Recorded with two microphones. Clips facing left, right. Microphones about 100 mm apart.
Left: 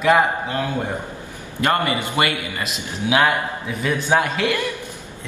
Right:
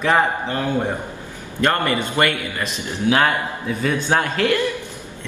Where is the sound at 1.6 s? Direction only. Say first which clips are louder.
Right 1 dB; 15° left (ahead or behind).